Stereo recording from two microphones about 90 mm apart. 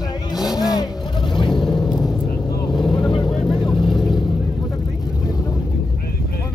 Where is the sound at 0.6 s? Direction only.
45° left (ahead or behind).